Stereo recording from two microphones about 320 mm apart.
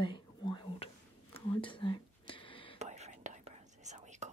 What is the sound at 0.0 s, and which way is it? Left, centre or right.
Whispering, centre.